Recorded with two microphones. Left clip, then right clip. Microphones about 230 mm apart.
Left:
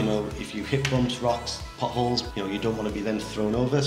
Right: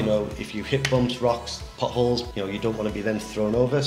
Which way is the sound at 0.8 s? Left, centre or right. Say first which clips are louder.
Right 4 dB; right.